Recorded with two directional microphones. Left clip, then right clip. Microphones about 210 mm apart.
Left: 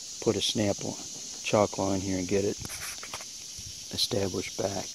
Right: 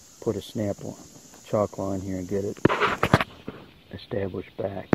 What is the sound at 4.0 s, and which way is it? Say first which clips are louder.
Speech: left 2 dB; 15° left (ahead or behind).